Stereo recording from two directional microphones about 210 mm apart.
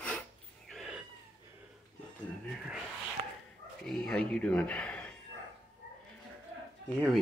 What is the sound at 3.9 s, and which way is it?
Speech, centre (ahead or behind).